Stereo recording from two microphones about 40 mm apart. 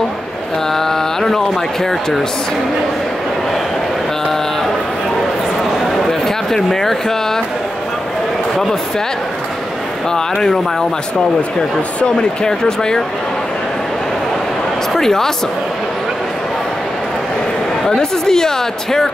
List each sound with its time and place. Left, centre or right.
0.7 s mantra: centre
1.8 s speech: centre
5.9 s a sound: centre
10.1 s speech: centre
12.4 s speech: centre
14.9 s speech: centre
17.8 s speech: centre